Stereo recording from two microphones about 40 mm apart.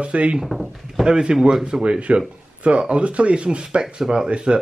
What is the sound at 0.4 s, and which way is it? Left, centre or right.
Speech, centre.